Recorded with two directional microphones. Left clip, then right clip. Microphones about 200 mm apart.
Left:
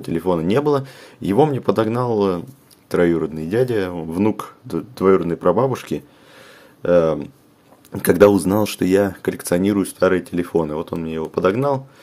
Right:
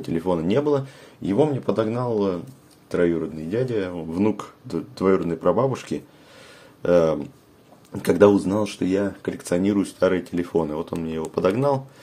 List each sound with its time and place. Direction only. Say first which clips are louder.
0.0 s speech: left 4 dB; 25° left (ahead or behind)